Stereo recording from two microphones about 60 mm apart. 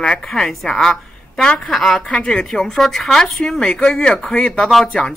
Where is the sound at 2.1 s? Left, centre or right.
Centre.